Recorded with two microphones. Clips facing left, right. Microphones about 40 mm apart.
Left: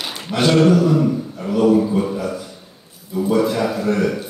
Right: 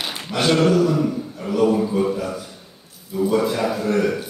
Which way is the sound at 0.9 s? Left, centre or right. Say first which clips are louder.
Left 3 dB; centre.